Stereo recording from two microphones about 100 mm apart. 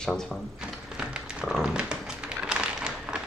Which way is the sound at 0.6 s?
5° right (ahead or behind).